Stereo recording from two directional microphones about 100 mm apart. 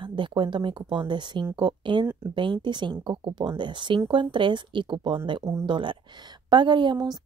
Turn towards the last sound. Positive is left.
turn(degrees=-40)  # may be behind; listen again after turning